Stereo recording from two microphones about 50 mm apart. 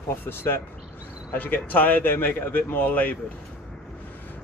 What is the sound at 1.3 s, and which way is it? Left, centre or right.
Speech, left.